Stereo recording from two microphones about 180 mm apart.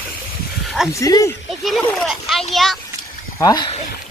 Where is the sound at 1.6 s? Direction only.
Centre (ahead or behind).